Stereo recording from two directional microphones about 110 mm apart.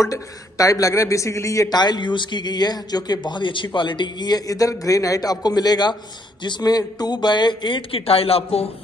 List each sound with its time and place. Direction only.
0.0 s a man's voice: 30° left (ahead or behind); by 8.6 s 65° left (ahead or behind)